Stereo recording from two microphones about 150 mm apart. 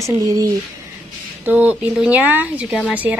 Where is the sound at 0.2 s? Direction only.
20° right (ahead or behind).